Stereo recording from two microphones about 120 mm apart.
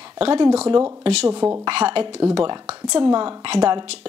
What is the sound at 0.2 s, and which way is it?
A woman's voice, 50° right (ahead or behind).